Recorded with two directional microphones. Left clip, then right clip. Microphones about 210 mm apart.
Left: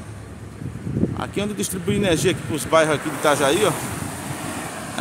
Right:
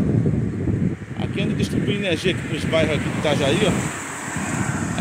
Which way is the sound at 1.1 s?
25° left (ahead or behind).